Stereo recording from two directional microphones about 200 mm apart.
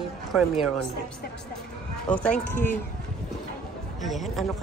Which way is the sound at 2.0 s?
5° left (ahead or behind).